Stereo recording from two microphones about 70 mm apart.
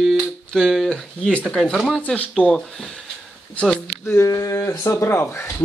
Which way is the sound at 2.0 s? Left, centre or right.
Centre.